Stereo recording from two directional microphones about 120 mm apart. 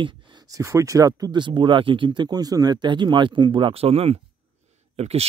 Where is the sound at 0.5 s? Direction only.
25° right (ahead or behind).